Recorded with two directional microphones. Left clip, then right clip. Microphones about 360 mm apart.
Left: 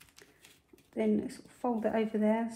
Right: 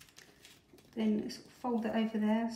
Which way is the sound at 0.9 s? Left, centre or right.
Centre.